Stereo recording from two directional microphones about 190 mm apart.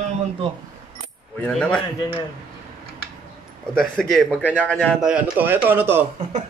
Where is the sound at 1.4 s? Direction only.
5° left (ahead or behind).